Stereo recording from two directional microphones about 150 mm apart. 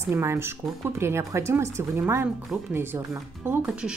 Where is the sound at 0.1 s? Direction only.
15° right (ahead or behind).